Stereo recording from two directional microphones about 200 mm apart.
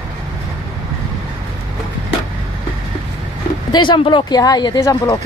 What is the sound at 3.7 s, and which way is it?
Speech, 25° left (ahead or behind).